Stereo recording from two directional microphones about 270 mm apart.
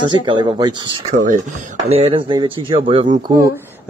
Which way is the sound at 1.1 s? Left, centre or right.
Right.